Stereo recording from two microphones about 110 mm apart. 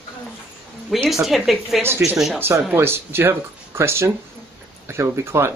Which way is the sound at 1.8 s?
25° right (ahead or behind).